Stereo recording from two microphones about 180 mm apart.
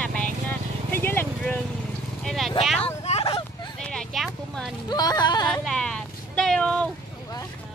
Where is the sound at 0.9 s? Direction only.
10° left (ahead or behind).